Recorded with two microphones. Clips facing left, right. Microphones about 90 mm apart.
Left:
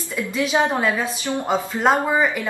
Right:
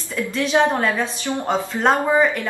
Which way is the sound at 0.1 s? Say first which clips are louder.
Right 2 dB; 5° left (ahead or behind).